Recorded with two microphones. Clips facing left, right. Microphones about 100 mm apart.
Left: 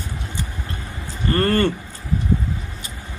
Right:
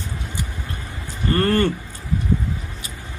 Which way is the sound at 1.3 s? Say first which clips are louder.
Even; 15° right (ahead or behind).